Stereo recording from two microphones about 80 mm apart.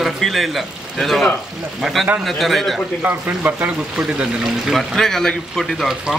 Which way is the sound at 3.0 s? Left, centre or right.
Right.